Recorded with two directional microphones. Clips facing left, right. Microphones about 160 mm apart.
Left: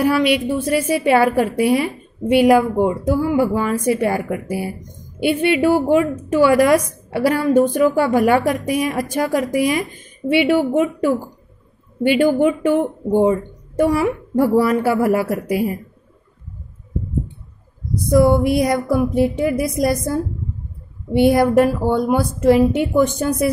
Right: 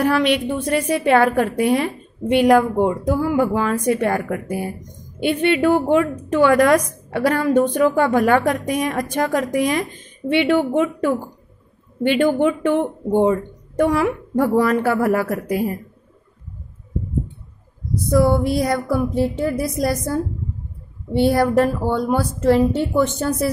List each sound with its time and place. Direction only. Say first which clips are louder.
0.0 s a woman's voice: left 1 dB; 5° left (ahead or behind)
18.1 s a woman's voice: left 3 dB; 15° left (ahead or behind)